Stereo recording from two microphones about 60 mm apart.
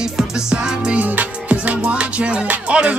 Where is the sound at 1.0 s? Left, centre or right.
Right.